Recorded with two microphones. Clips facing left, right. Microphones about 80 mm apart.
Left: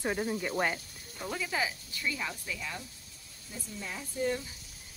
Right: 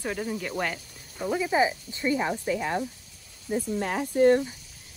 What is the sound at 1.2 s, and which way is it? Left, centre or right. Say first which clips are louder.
Speech: right 9 dB; centre.